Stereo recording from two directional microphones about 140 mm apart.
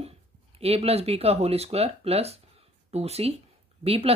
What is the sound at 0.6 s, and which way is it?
Speech, 45° right (ahead or behind).